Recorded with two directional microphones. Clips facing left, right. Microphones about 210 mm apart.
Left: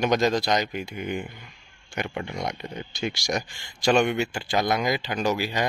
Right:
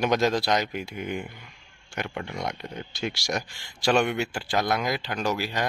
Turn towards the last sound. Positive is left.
turn(degrees=0)  # may be behind; listen again after turning